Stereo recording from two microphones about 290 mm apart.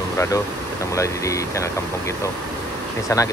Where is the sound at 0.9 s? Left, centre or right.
Centre.